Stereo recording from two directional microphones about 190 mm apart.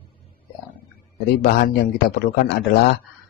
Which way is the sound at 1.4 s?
55° left (ahead or behind).